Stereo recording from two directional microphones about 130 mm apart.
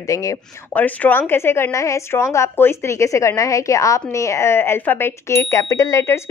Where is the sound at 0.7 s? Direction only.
10° left (ahead or behind).